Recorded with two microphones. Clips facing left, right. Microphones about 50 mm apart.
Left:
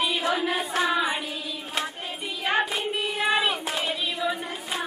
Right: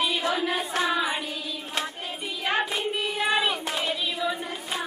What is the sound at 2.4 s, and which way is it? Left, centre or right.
Child singing, centre.